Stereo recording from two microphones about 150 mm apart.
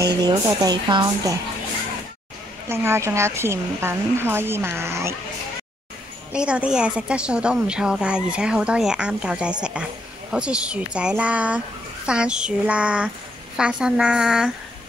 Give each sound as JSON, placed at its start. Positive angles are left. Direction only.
{"t": 0.0, "sound": "speech", "side_deg": -25}
{"t": 2.7, "sound": "a woman's voice", "side_deg": -15}
{"t": 6.3, "sound": "a woman's voice", "side_deg": -5}